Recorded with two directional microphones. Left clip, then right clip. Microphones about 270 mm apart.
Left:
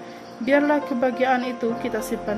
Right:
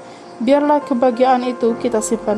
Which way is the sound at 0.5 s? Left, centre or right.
Centre.